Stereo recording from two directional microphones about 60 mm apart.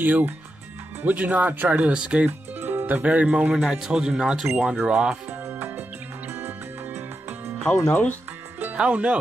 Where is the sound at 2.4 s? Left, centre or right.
Right.